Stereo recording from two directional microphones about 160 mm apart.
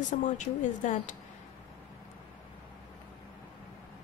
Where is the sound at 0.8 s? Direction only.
50° left (ahead or behind).